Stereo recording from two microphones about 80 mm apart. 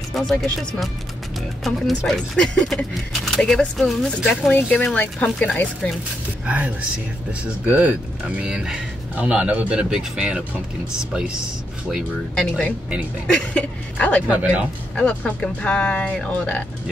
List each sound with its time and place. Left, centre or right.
0.1 s speech: centre
4.5 s speech: centre
6.4 s speech: centre
12.4 s speech: centre
14.2 s speech: centre
15.0 s speech: centre